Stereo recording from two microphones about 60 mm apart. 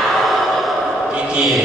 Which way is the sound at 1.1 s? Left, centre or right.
Centre.